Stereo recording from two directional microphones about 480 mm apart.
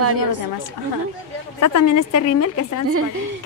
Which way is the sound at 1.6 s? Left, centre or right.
Left.